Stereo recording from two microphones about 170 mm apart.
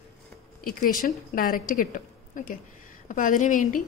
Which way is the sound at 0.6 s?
55° left (ahead or behind).